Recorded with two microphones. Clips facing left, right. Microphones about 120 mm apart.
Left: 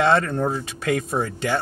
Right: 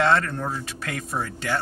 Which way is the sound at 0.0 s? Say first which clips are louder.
Left 3 dB; 25° left (ahead or behind).